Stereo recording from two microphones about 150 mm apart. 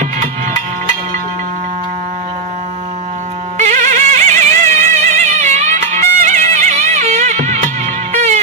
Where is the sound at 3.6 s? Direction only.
55° right (ahead or behind).